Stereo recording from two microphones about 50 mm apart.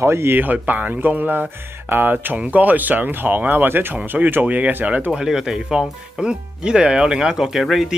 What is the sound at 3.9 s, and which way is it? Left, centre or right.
Speech, right.